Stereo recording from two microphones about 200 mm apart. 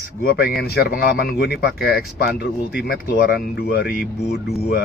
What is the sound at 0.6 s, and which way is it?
Speech, 50° left (ahead or behind).